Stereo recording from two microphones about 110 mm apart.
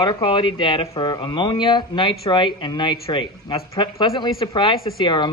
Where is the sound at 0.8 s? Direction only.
35° left (ahead or behind).